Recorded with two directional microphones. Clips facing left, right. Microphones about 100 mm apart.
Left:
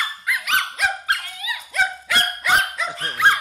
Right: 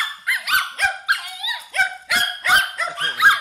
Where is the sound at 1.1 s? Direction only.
15° right (ahead or behind).